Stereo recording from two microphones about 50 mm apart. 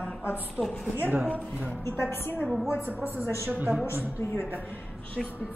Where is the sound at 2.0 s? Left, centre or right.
Left.